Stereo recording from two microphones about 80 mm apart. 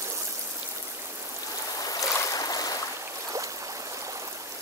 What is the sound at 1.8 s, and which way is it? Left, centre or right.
Boat, left.